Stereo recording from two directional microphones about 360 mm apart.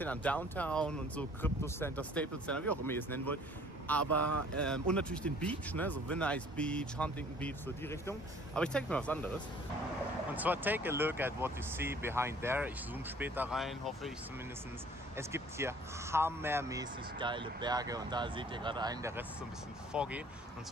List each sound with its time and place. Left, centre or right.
0.0 s speech: centre
4.2 s speech: right
4.8 s speech: centre
10.3 s speech: centre
15.1 s speech: centre